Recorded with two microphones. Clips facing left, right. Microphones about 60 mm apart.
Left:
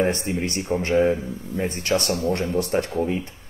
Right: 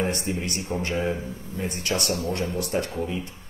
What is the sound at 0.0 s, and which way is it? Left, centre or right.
Speech, left.